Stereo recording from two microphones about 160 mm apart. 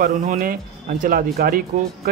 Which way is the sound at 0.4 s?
60° right (ahead or behind).